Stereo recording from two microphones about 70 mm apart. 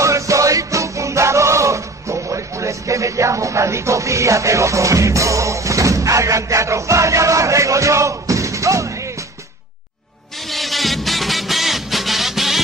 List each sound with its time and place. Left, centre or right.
0.0 s music: right
10.4 s music: centre